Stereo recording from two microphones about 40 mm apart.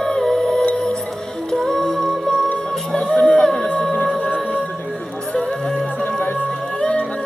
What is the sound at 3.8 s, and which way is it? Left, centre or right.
Music, centre.